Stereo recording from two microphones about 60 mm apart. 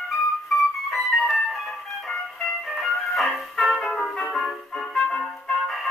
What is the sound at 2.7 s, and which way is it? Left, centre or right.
Music, centre.